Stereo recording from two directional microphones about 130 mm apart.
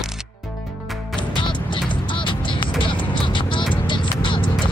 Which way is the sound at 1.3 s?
40° left (ahead or behind).